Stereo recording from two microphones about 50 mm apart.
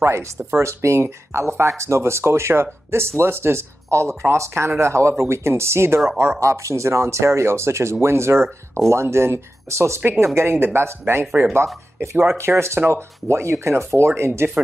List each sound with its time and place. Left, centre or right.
0.0 s speech: right
6.4 s speech: right
11.5 s speech: right